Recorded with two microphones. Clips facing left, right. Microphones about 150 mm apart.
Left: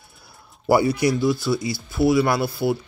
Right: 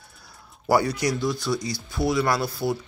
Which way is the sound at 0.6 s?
10° left (ahead or behind).